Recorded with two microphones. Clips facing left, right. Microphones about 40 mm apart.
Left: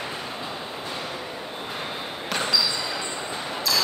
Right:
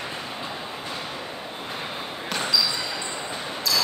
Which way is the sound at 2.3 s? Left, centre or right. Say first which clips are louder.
Even; centre.